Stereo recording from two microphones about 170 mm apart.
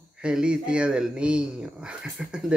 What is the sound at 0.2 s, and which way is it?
Speech, 5° right (ahead or behind).